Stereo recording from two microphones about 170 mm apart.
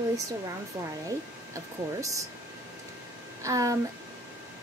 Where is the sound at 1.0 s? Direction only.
20° right (ahead or behind).